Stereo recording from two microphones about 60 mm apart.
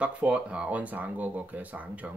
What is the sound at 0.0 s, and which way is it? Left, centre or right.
Speech, right.